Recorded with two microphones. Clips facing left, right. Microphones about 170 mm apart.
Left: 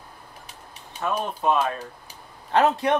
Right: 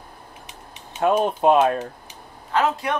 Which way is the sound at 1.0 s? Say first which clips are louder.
Right 7 dB; 60° right (ahead or behind).